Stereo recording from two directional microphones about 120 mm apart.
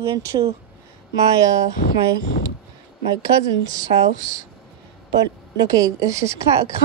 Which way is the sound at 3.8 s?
90° right.